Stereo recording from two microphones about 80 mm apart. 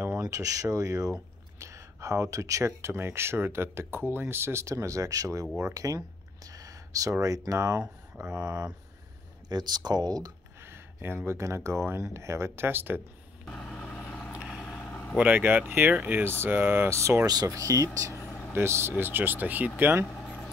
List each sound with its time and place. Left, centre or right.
0.2 s speech: right
9.5 s speech: right
10.6 s speech: right
13.5 s vehicle: centre
15.1 s speech: centre; by 17.3 s right
17.3 s speech: right
18.5 s speech: right